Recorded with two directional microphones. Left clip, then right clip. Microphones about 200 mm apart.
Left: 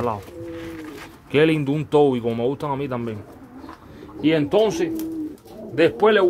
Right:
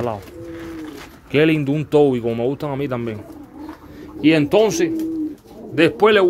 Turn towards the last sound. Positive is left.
turn(degrees=-15)  # may be behind; listen again after turning